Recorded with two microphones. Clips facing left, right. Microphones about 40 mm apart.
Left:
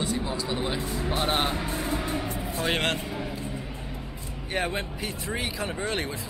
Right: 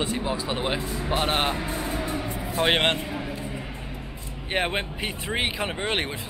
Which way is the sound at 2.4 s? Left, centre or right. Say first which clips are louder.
Right 7 dB; right.